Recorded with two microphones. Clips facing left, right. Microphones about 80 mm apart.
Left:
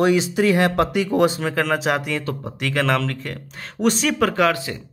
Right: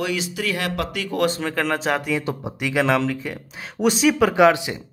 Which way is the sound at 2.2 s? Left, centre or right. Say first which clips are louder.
Right 1 dB; centre.